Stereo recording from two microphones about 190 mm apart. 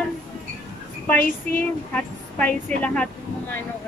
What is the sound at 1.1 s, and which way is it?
A woman's voice, 10° left (ahead or behind).